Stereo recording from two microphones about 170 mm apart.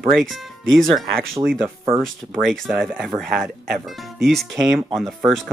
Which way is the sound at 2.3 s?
Centre (ahead or behind).